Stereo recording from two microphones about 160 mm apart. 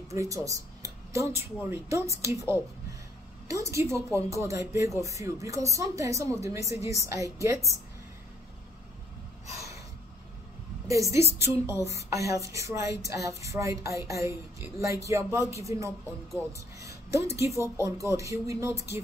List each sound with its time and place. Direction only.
0.1 s speech: 20° right (ahead or behind)
3.7 s speech: 20° right (ahead or behind)
10.9 s a woman's voice: 20° right (ahead or behind)